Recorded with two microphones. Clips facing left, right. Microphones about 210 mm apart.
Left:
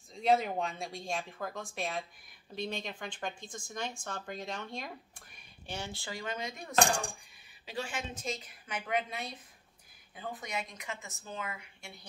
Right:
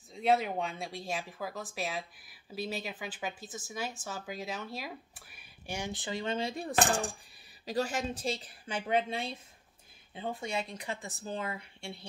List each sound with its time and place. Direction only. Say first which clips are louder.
0.1 s speech: even; centre (ahead or behind); by 6.7 s 30° right (ahead or behind)
6.7 s speech: left 1 dB; 5° right (ahead or behind)
7.6 s speech: right 6 dB; 40° right (ahead or behind)